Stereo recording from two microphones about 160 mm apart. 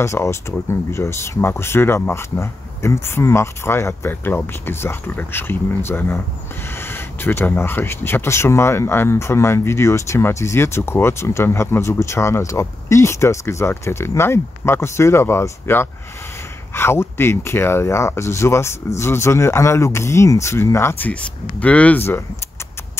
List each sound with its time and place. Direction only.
0.0 s speech: 15° left (ahead or behind)